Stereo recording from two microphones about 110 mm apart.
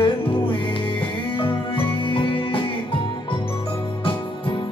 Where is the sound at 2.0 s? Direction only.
50° left (ahead or behind).